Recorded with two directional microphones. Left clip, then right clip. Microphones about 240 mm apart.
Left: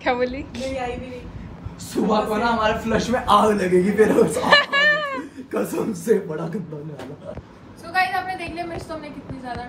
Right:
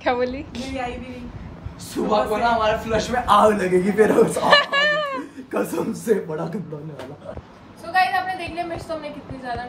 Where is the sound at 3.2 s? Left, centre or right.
Centre.